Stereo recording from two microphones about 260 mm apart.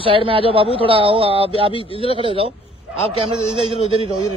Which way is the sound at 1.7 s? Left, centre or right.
Left.